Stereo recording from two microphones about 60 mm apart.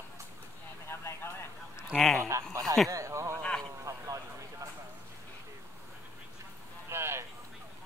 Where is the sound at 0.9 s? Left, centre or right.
Left.